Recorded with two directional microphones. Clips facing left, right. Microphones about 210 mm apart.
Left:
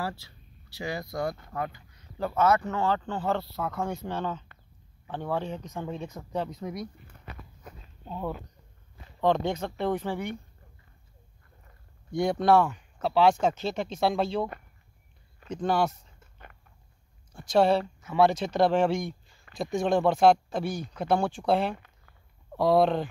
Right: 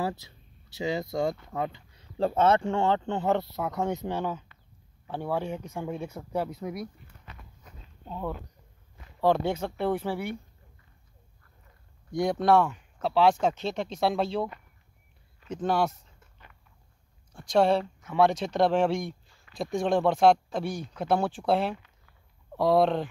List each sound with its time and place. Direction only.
0.0 s speech: 20° right (ahead or behind)
8.1 s speech: 5° left (ahead or behind)
9.2 s speech: 10° right (ahead or behind)
12.1 s speech: centre (ahead or behind)
17.3 s speech: centre (ahead or behind)
21.7 s a sound: 50° left (ahead or behind)
22.6 s speech: centre (ahead or behind)